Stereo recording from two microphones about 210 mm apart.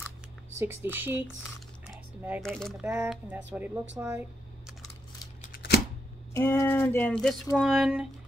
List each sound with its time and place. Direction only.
0.6 s a woman's voice: 10° right (ahead or behind)
2.4 s a woman's voice: centre (ahead or behind)
5.4 s typewriter: 45° left (ahead or behind)
6.3 s speech: 10° left (ahead or behind); by 8.1 s 5° right (ahead or behind)